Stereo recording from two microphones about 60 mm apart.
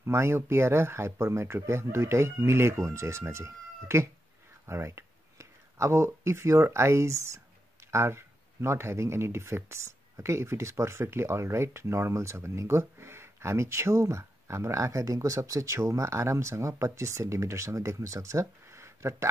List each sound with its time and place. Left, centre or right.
0.0 s speech: right